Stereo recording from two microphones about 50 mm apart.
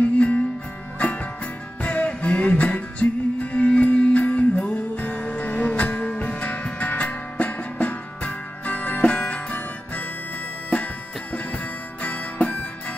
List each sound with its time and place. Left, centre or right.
0.0 s music: left